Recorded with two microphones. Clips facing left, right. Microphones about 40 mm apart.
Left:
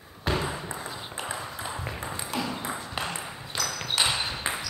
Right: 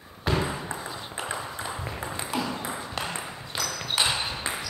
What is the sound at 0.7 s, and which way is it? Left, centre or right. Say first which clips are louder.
Ping: right 1 dB; centre.